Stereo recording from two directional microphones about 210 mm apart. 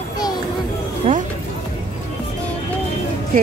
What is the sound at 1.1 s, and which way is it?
Music, 40° right (ahead or behind).